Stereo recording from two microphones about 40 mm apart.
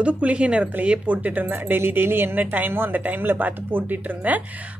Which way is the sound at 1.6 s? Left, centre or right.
Right.